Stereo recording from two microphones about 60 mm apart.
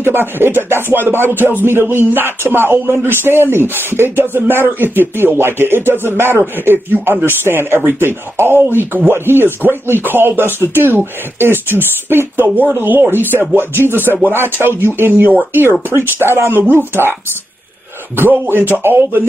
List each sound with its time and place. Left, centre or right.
0.0 s speech: right
16.2 s speech: right
18.1 s speech: right